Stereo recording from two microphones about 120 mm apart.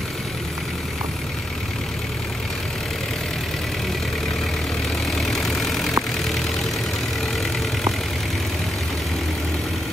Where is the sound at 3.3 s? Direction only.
Centre (ahead or behind).